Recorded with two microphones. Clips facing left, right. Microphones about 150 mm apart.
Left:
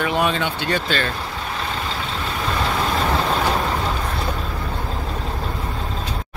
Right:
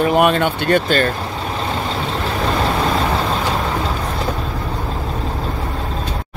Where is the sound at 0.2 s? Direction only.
55° right (ahead or behind).